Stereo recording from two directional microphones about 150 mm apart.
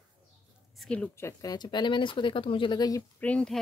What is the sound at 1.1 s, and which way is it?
Speech, 20° left (ahead or behind).